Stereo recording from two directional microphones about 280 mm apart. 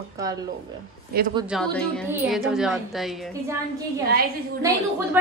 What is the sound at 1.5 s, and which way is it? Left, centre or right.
A woman's voice, centre.